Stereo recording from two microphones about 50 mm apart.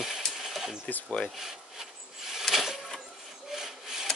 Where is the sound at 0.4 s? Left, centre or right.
Centre.